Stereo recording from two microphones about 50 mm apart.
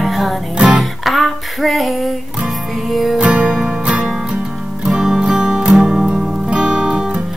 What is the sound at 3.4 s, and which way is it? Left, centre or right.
Music, centre.